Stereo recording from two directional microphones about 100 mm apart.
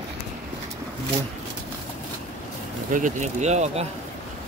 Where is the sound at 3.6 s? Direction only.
90° right.